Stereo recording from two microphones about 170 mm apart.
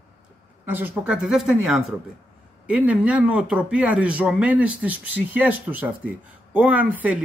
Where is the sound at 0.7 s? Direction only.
10° right (ahead or behind).